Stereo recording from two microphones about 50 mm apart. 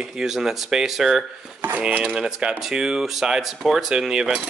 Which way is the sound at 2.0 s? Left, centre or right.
Centre.